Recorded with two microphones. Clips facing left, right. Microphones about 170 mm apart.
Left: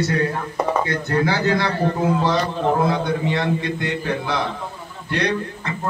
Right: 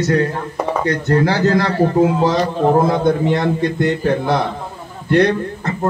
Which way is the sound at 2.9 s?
45° right (ahead or behind).